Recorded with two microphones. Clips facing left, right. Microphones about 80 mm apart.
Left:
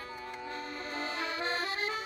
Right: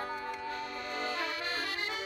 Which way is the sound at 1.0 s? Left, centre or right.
Left.